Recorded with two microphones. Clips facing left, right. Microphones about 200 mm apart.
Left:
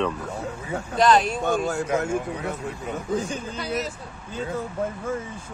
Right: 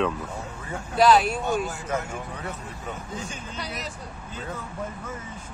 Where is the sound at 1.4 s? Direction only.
55° left (ahead or behind).